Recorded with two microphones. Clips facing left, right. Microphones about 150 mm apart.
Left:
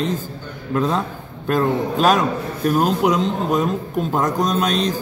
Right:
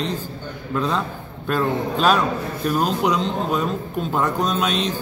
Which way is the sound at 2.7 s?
5° left (ahead or behind).